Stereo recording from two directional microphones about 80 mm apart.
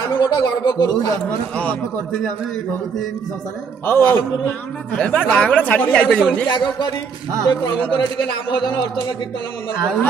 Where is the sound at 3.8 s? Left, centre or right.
Left.